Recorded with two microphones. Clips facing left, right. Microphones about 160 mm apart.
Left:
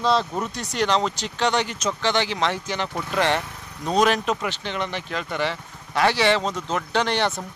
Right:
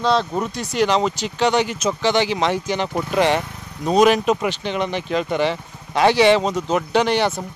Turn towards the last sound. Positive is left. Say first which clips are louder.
# right 5 dB
turn(degrees=-5)  # may be behind; listen again after turning